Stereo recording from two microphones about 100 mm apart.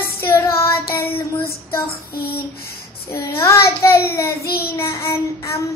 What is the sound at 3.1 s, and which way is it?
Child singing, 30° left (ahead or behind).